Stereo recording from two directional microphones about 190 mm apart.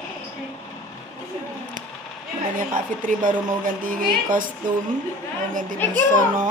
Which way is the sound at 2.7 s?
45° right (ahead or behind).